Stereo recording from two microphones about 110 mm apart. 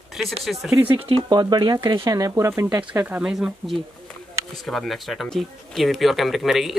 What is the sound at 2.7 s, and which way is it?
Speech, 15° right (ahead or behind).